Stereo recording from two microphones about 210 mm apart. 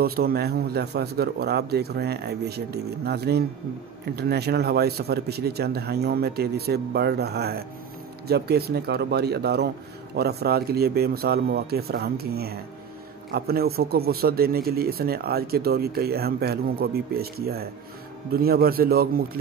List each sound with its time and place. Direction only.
0.0 s speech: 45° right (ahead or behind)